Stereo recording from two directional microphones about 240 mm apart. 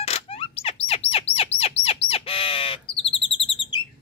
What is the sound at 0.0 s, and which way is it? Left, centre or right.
Bird, left.